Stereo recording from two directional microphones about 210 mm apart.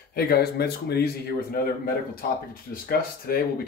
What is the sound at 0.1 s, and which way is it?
Speech, 50° left (ahead or behind).